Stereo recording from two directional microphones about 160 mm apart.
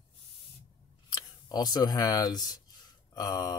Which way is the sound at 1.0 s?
25° left (ahead or behind).